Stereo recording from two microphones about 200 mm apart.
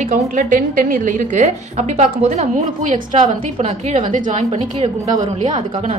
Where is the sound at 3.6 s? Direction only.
30° right (ahead or behind).